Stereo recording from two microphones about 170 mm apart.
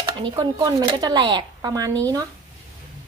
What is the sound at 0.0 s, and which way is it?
Speech, 20° right (ahead or behind).